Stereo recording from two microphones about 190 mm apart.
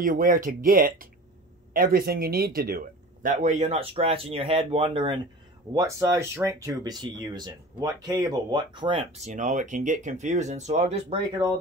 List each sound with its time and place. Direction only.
0.0 s speech: 45° right (ahead or behind); by 5.2 s 25° right (ahead or behind)
5.8 s speech: 15° right (ahead or behind)